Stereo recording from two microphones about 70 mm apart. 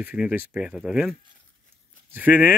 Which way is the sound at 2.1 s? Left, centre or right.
Right.